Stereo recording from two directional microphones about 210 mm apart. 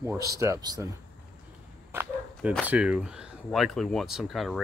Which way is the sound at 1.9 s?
5° right (ahead or behind).